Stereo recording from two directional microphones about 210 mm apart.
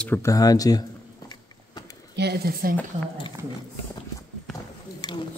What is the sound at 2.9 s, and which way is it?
Speech, 35° right (ahead or behind).